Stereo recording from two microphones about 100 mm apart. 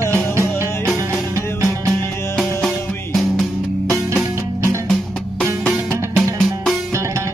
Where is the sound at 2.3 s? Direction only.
Centre (ahead or behind).